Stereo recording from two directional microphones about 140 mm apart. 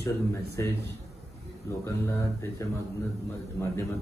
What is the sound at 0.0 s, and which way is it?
Speech, 20° left (ahead or behind).